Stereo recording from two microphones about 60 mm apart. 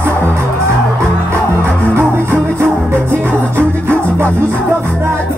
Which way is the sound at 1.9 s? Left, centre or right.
Right.